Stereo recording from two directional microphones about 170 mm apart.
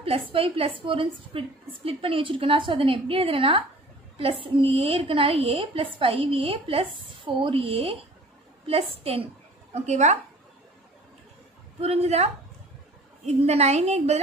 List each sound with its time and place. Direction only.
0.0 s a woman's voice: 35° right (ahead or behind)
11.8 s a woman's voice: 35° right (ahead or behind)